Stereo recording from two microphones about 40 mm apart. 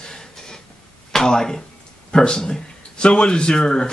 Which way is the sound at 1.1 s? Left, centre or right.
Centre.